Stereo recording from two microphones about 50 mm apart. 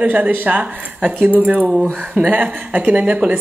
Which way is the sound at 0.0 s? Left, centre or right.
Right.